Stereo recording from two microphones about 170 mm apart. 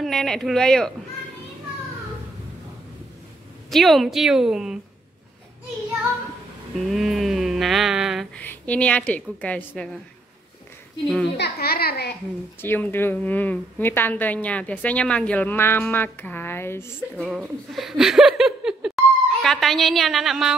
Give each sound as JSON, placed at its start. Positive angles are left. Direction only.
{"t": 0.0, "sound": "a woman's voice", "side_deg": 5}
{"t": 3.7, "sound": "a woman's voice", "side_deg": 0}
{"t": 6.8, "sound": "a sound", "side_deg": 0}
{"t": 8.4, "sound": "a woman's voice", "side_deg": 10}
{"t": 11.3, "sound": "a child's voice", "side_deg": 70}
{"t": 12.6, "sound": "a woman's voice", "side_deg": 10}
{"t": 17.2, "sound": "speech", "side_deg": 0}